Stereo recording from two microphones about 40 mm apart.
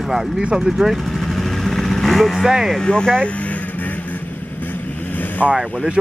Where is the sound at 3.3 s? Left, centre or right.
Left.